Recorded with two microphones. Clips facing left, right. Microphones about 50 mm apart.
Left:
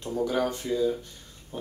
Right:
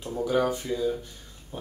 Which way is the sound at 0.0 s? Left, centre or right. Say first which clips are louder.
Right 1 dB; centre.